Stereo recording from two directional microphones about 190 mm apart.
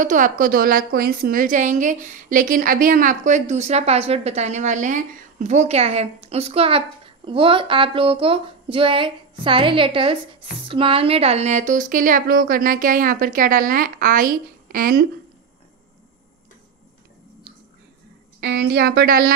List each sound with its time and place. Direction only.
0.0 s a woman's voice: 45° right (ahead or behind)
18.4 s speech: 65° right (ahead or behind)